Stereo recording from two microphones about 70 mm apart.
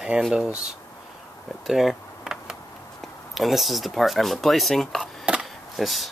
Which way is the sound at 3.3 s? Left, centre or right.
Centre.